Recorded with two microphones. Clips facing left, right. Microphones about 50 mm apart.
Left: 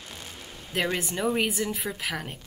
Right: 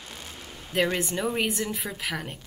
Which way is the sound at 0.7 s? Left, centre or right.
Centre.